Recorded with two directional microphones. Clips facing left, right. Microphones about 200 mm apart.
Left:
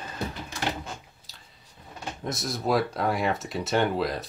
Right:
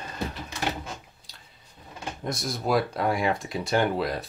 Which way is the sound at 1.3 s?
5° left (ahead or behind).